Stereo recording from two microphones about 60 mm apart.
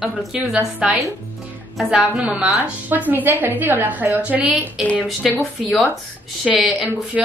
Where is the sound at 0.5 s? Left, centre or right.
Centre; by 4.2 s right.